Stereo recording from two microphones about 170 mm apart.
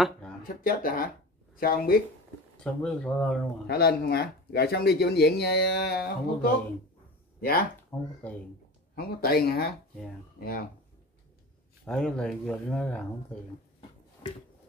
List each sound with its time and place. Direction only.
0.4 s speech: 55° left (ahead or behind)
2.5 s speech: 5° left (ahead or behind)
3.6 s speech: 70° left (ahead or behind)
7.9 s speech: 20° left (ahead or behind)
8.9 s speech: 65° left (ahead or behind)
11.8 s speech: 5° left (ahead or behind)